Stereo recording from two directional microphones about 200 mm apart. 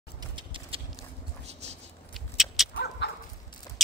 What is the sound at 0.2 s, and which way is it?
Horse, 25° right (ahead or behind).